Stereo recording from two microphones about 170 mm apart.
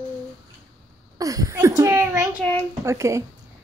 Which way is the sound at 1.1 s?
20° right (ahead or behind).